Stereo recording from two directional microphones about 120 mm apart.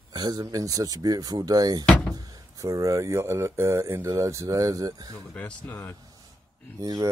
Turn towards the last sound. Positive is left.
turn(degrees=-30)  # may be behind; listen again after turning